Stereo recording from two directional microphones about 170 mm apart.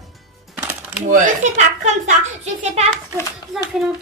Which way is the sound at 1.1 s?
45° right (ahead or behind).